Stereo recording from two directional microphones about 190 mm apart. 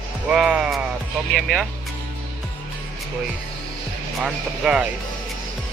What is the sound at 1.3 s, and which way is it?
Speech, centre (ahead or behind).